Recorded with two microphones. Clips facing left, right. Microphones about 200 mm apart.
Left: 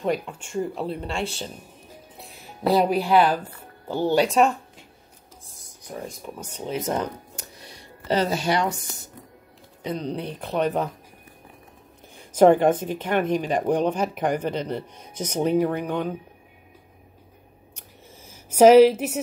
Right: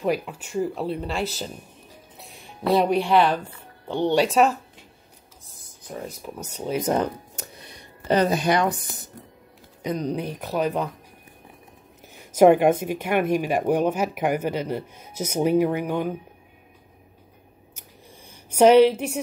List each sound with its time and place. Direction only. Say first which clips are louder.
0.0 s speech: right 1 dB; 5° right (ahead or behind)
5.9 s speech: right 1 dB; 5° right (ahead or behind)
6.8 s speech: right 4 dB; 25° right (ahead or behind)
10.0 s a woman's voice: right 2 dB; 10° right (ahead or behind)
12.3 s a woman's voice: right 1 dB; 10° right (ahead or behind)
17.7 s a sound: even; 5° left (ahead or behind)